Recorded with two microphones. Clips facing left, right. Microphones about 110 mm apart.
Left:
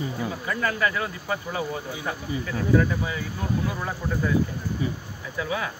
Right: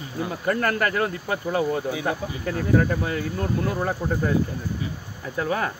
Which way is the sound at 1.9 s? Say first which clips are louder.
Right 6 dB; 90° right.